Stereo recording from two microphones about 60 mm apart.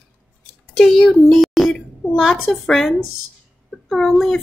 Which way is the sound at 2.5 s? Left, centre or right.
Centre.